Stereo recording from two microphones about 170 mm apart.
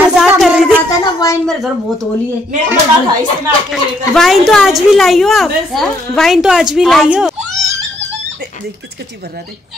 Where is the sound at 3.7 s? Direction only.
Centre (ahead or behind).